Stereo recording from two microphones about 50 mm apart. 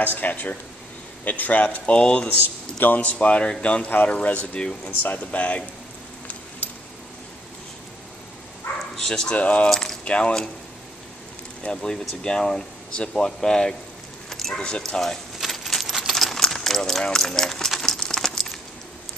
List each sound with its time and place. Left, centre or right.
0.0 s speech: left
2.8 s speech: left
8.9 s speech: centre
9.3 s speech: left
9.7 s speech: centre
10.0 s speech: left
11.6 s speech: centre
14.3 s keys jangling: centre
14.9 s speech: centre
15.3 s coin: centre
17.0 s a sound: centre